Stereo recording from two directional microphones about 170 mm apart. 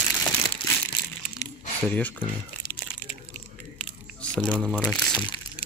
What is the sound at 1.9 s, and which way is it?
Speech, 10° left (ahead or behind).